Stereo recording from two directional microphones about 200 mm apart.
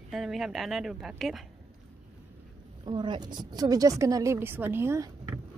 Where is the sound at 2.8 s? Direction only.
20° right (ahead or behind).